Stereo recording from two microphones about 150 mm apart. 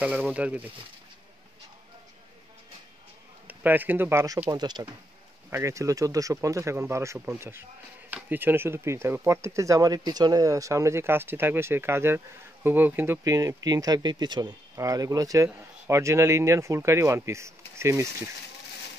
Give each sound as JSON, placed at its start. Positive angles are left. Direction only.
{"t": 0.0, "sound": "speech", "side_deg": -10}
{"t": 3.4, "sound": "speech", "side_deg": -10}